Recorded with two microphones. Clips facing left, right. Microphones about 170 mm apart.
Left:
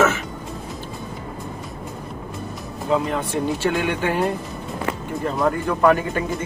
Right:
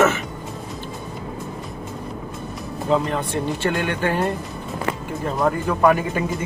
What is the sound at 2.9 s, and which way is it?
Speech, 5° left (ahead or behind).